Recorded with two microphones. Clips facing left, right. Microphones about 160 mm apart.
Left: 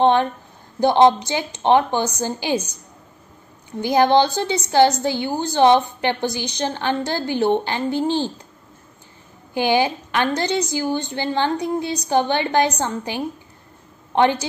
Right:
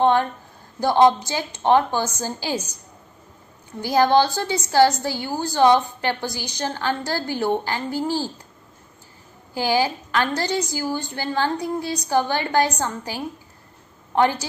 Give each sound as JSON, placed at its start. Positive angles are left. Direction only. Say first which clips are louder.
{"t": 0.0, "sound": "a woman's voice", "louder": "left 2 dB", "side_deg": 20}
{"t": 3.8, "sound": "a woman's voice", "louder": "left 2 dB", "side_deg": 20}
{"t": 9.5, "sound": "a woman's voice", "louder": "left 3 dB", "side_deg": 20}